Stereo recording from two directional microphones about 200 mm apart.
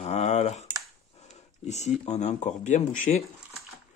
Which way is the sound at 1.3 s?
35° left (ahead or behind).